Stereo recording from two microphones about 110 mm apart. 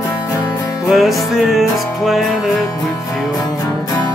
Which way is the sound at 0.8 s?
Centre (ahead or behind).